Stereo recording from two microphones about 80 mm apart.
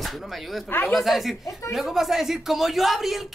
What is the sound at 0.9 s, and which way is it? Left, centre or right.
Speech, centre.